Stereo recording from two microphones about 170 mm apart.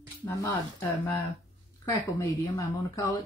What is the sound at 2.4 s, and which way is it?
Speech, 20° left (ahead or behind).